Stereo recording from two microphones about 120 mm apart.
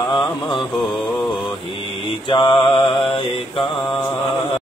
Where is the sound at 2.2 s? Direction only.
40° left (ahead or behind).